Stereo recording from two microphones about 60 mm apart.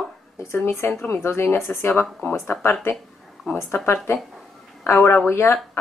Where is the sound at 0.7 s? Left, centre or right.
Left.